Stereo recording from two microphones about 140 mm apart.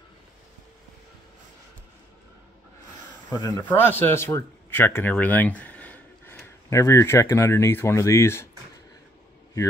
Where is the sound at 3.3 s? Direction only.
25° left (ahead or behind).